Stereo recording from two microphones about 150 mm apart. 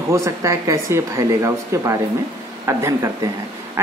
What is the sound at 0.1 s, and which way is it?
A woman's voice, 20° right (ahead or behind).